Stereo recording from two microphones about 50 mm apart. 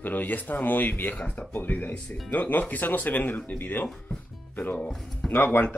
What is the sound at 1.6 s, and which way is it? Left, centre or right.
Speech, left.